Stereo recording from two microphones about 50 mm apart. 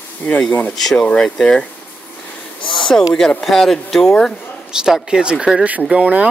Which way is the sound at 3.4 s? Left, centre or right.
Centre.